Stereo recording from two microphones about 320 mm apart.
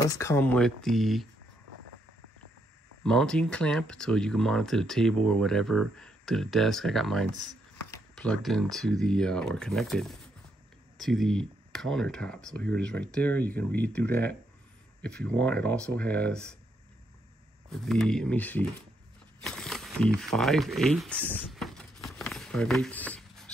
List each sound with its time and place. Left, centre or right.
0.0 s speech: centre
3.0 s speech: centre
17.6 s speech: centre
19.4 s a sound: centre